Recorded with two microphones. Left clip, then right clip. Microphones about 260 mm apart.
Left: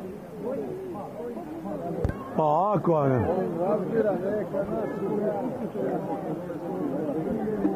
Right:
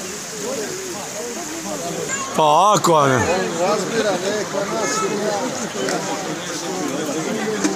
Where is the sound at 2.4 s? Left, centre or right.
Right.